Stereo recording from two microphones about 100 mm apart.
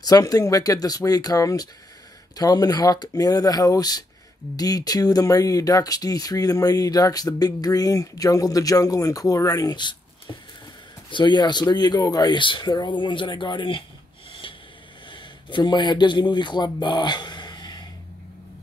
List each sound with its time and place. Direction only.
0.0 s speech: 40° left (ahead or behind)
11.1 s speech: 50° left (ahead or behind)
14.4 s vehicle: 60° left (ahead or behind)
15.0 s speech: 55° left (ahead or behind)